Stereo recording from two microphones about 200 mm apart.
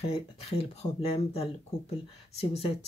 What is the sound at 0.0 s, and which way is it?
Speech, 30° left (ahead or behind).